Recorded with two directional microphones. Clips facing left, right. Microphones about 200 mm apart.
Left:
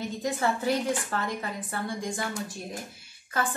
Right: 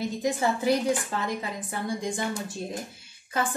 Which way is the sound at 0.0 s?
15° right (ahead or behind).